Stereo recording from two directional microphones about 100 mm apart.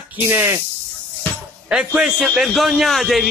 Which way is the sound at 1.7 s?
10° right (ahead or behind).